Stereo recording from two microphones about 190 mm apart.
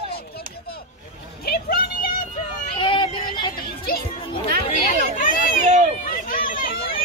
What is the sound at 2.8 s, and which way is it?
Child singing, 25° left (ahead or behind).